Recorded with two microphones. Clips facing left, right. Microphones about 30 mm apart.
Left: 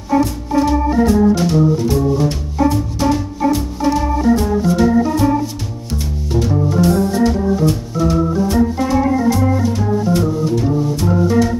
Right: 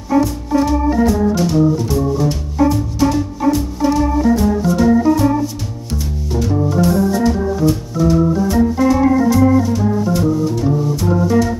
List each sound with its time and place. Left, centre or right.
0.2 s organ: centre
1.0 s music: centre
2.6 s organ: centre
6.3 s organ: centre
9.7 s music: centre